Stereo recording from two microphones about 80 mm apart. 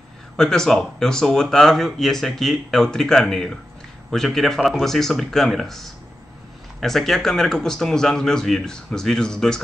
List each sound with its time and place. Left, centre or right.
0.4 s speech: centre